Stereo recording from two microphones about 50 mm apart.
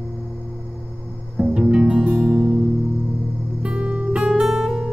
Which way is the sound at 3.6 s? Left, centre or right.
Right.